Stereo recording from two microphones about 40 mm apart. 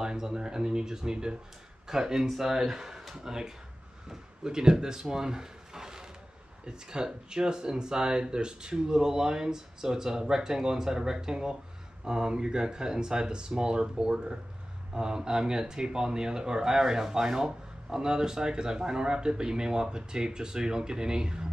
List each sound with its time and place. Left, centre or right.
0.0 s speech: centre